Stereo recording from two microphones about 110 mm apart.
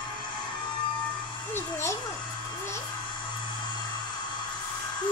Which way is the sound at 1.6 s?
25° left (ahead or behind).